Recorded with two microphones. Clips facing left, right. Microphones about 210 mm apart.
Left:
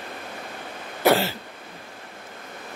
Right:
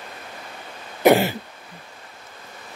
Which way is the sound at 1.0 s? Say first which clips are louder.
Right 4 dB; 15° right (ahead or behind).